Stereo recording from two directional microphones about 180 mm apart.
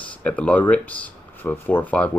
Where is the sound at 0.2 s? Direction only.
10° left (ahead or behind).